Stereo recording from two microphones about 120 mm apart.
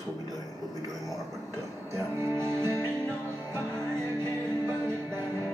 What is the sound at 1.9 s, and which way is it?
Music, 20° right (ahead or behind).